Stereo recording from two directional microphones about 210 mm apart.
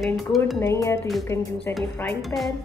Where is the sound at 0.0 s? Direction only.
Centre (ahead or behind).